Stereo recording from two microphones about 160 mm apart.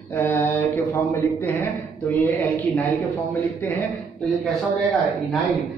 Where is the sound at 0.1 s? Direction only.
15° left (ahead or behind).